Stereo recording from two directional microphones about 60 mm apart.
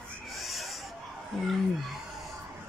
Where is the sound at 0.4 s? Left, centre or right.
Centre.